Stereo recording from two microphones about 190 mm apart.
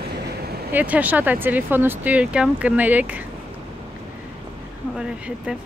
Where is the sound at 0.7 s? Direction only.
10° right (ahead or behind).